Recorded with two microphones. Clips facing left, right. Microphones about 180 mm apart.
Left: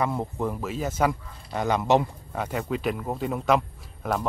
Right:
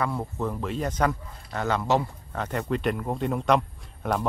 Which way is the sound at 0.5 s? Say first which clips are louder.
Even; 5° left (ahead or behind).